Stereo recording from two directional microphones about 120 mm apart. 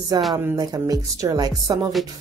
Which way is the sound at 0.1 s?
30° right (ahead or behind).